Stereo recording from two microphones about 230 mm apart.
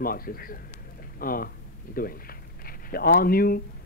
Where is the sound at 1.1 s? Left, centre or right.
Left.